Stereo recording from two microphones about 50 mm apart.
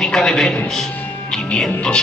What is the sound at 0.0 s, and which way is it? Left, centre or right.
Speech, centre.